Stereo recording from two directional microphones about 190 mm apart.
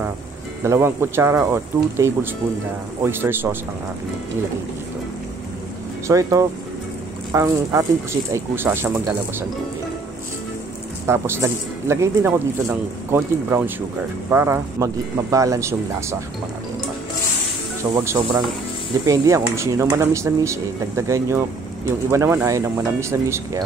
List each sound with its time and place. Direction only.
0.7 s speech: 15° right (ahead or behind)
6.0 s speech: 15° right (ahead or behind)
11.1 s speech: 15° right (ahead or behind)
18.0 s speech: 15° right (ahead or behind)